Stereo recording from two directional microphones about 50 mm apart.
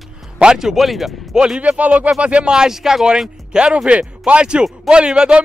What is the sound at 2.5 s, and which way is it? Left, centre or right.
Speech, centre.